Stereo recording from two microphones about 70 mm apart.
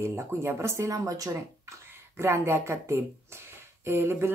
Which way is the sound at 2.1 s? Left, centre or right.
Right.